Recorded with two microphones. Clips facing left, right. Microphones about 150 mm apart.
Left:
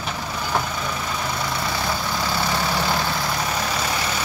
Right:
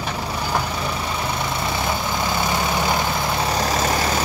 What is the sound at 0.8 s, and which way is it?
Vehicle, 25° right (ahead or behind).